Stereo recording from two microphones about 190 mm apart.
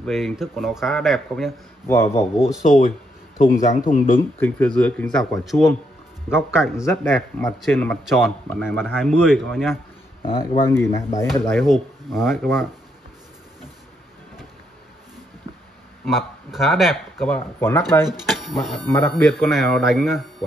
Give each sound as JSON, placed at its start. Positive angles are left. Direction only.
{"t": 0.0, "sound": "speech", "side_deg": 0}
{"t": 1.9, "sound": "speech", "side_deg": 15}
{"t": 3.4, "sound": "speech", "side_deg": 40}
{"t": 4.4, "sound": "speech", "side_deg": 5}
{"t": 6.8, "sound": "speech", "side_deg": 10}
{"t": 10.2, "sound": "speech", "side_deg": 30}
{"t": 10.6, "sound": "speech", "side_deg": 15}
{"t": 16.1, "sound": "speech", "side_deg": 0}
{"t": 17.6, "sound": "speech", "side_deg": 10}
{"t": 18.0, "sound": "speech", "side_deg": 0}